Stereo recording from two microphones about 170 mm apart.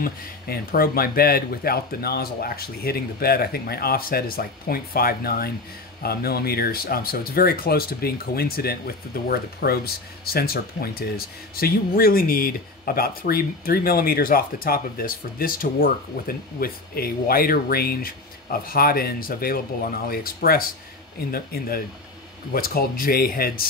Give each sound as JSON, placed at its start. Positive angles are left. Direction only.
{"t": 0.0, "sound": "speech", "side_deg": 60}